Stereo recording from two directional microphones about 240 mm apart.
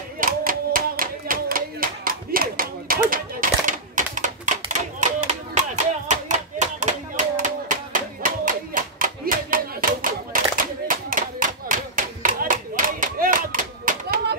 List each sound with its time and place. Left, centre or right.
0.2 s hands: right
5.2 s clapping: right